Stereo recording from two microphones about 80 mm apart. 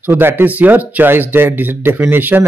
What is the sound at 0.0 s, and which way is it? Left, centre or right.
Speech, right.